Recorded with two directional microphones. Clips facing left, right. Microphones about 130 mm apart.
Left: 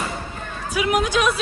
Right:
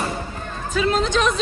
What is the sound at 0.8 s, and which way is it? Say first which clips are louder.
Speech: even; 15° left (ahead or behind).